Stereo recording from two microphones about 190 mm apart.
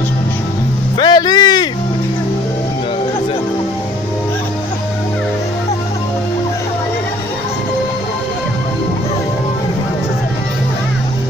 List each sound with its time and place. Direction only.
0.9 s vehicle: 25° left (ahead or behind)